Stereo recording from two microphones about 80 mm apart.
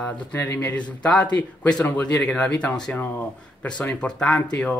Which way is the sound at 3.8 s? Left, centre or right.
Centre.